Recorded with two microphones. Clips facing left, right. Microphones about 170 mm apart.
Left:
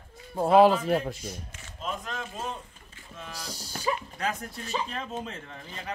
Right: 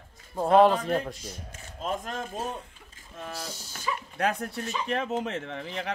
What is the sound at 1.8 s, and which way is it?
Speech, 50° right (ahead or behind).